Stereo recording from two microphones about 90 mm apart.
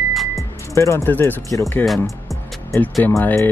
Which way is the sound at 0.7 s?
30° left (ahead or behind).